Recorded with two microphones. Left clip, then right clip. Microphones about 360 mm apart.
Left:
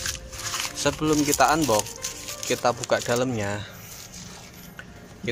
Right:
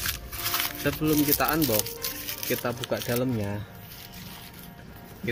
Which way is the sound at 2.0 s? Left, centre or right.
Centre.